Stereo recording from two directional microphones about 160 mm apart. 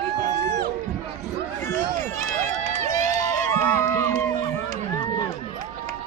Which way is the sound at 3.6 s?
15° left (ahead or behind).